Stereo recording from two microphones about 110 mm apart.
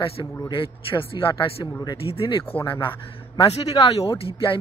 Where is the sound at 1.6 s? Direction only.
35° left (ahead or behind).